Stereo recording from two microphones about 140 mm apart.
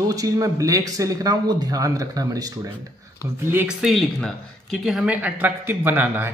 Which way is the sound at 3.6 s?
Centre (ahead or behind).